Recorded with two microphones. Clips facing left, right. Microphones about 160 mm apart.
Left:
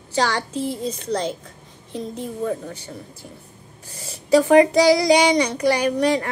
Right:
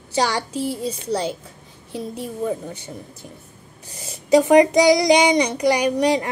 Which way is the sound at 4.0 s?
20° right (ahead or behind).